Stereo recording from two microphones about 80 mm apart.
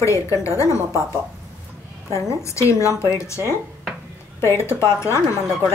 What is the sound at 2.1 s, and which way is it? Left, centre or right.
A woman's voice, left.